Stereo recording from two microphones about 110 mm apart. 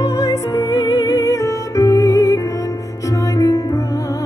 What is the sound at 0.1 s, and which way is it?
Music, 25° left (ahead or behind).